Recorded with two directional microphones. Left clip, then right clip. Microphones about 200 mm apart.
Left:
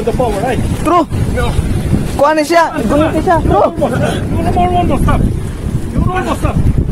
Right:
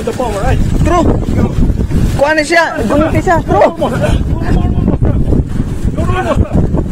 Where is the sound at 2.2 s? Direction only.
15° left (ahead or behind).